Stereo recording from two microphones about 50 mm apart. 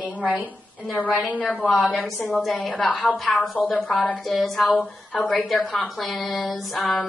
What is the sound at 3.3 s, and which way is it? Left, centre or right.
Speech, left.